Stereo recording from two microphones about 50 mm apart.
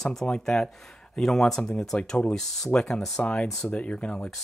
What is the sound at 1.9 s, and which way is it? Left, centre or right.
Speech, left.